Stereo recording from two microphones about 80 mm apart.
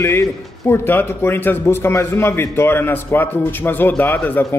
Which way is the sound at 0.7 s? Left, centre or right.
Left.